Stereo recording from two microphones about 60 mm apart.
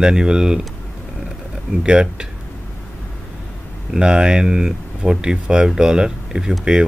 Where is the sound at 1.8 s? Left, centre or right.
Centre.